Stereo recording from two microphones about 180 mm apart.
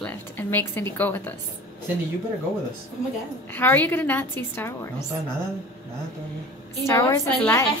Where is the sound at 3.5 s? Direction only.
10° left (ahead or behind).